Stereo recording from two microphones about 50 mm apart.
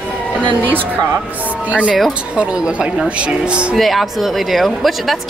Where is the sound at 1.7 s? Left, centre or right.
Right.